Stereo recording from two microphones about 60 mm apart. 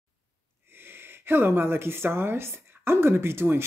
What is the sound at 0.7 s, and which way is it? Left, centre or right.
Speech, right.